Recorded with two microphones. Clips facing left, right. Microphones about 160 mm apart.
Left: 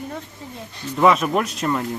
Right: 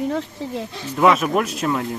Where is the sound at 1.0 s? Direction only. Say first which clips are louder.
Even; centre (ahead or behind).